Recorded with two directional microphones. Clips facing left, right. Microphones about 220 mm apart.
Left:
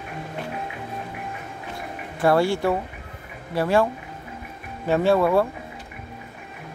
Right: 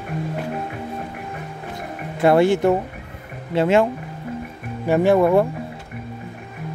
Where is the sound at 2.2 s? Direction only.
20° right (ahead or behind).